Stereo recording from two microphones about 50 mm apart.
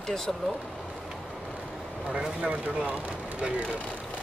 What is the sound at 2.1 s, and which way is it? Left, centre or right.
Speech, centre.